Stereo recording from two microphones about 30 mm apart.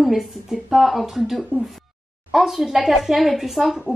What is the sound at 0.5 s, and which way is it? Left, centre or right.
Speech, right.